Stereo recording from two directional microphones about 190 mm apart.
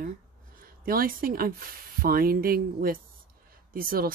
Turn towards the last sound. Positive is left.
turn(degrees=-50)  # may be behind; listen again after turning